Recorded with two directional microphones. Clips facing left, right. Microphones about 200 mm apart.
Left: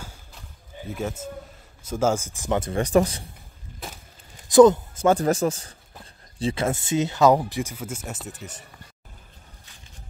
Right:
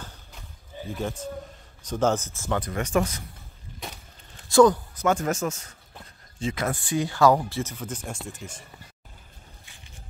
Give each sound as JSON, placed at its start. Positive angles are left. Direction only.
{"t": 0.0, "sound": "a sound", "side_deg": 10}
{"t": 0.8, "sound": "a man's voice", "side_deg": 5}
{"t": 4.4, "sound": "a man's voice", "side_deg": 20}